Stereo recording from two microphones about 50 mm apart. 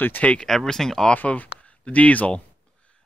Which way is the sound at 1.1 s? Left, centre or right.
Left.